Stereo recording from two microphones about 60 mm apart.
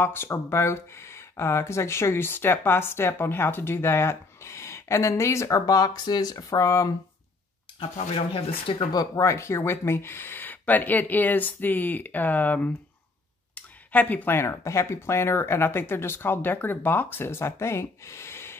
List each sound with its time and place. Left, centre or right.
0.0 s speech: left
5.5 s speech: left
8.9 s speech: left
9.2 s speech: left
13.6 s a sound: left
14.3 s speech: left